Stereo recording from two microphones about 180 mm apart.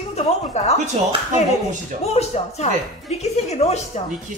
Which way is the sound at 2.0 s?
35° left (ahead or behind).